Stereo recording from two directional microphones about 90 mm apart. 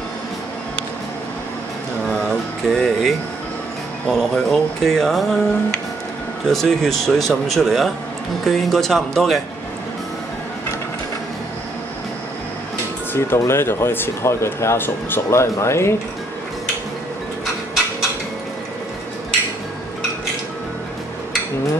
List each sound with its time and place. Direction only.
2.7 s speech: 5° left (ahead or behind)
13.1 s speech: 25° left (ahead or behind)